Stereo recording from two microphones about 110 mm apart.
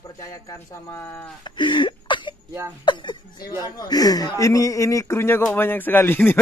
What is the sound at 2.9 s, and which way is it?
Speech, 45° left (ahead or behind).